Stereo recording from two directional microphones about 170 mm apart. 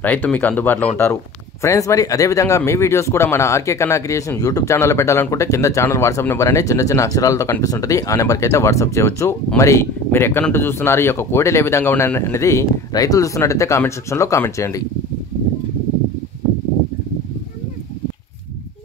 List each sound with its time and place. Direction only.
0.0 s speech: 10° left (ahead or behind)